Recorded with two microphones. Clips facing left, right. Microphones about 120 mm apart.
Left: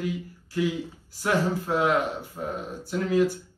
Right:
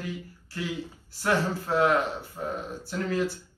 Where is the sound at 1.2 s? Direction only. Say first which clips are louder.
Left 1 dB; 15° left (ahead or behind).